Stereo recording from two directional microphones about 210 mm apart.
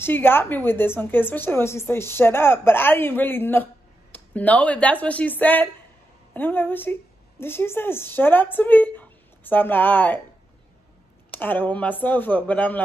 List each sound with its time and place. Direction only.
0.0 s a woman's voice: 10° left (ahead or behind)
11.2 s a woman's voice: 10° left (ahead or behind)